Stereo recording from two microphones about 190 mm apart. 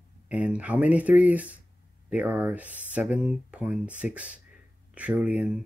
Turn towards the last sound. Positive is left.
turn(degrees=-5)  # may be behind; listen again after turning